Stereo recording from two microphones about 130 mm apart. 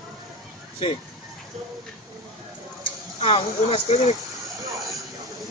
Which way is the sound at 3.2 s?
45° left (ahead or behind).